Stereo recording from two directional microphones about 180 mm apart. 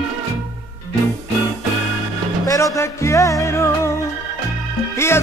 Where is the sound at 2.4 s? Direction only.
15° left (ahead or behind).